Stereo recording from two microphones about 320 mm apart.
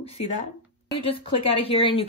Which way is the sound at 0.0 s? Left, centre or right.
Centre.